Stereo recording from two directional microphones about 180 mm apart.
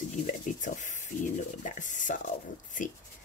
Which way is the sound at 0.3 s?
45° left (ahead or behind).